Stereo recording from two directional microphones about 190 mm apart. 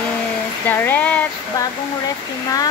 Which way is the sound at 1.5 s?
20° left (ahead or behind).